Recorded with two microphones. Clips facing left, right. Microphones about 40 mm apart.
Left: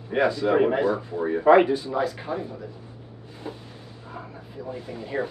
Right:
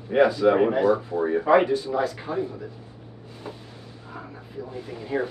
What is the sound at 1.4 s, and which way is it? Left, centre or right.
Speech, left.